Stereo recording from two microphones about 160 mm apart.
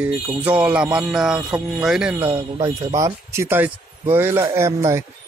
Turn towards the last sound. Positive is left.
turn(degrees=-20)  # may be behind; listen again after turning